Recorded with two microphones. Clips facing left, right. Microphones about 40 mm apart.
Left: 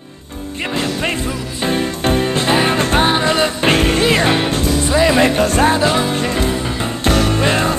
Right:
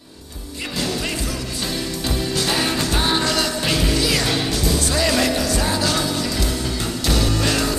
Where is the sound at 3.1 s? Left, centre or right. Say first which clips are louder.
Left 5 dB; left.